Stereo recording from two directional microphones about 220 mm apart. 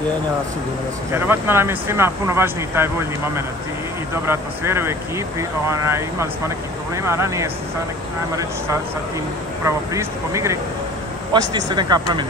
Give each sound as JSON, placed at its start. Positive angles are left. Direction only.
{"t": 1.1, "sound": "speech", "side_deg": -10}
{"t": 9.7, "sound": "speech", "side_deg": -15}